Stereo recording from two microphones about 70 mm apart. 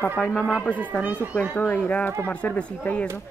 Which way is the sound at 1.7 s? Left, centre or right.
Left.